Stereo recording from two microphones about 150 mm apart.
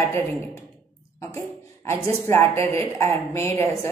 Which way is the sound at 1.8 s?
15° left (ahead or behind).